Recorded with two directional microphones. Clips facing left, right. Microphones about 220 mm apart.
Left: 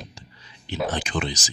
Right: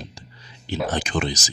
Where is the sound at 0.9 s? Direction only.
45° right (ahead or behind).